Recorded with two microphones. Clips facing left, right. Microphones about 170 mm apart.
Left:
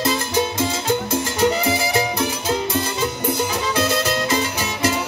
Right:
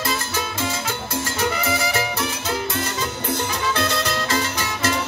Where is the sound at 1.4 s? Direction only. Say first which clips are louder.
Left 4 dB; 30° left (ahead or behind).